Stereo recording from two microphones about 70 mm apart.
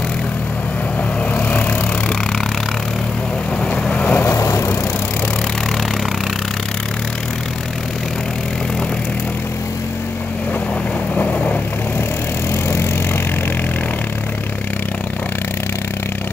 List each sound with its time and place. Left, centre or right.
1.3 s vehicle: left
3.7 s vehicle: centre
4.4 s vehicle: left